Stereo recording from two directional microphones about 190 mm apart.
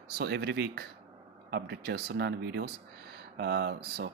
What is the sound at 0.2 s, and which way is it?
Speech, 65° right (ahead or behind).